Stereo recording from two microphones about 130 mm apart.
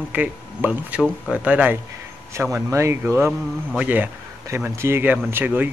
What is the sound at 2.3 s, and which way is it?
Speech, 20° right (ahead or behind).